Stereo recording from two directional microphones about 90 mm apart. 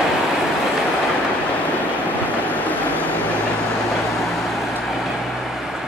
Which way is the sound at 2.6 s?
20° left (ahead or behind).